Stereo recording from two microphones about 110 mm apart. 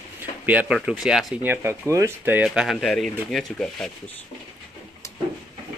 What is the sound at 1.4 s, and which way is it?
Speech, 20° right (ahead or behind).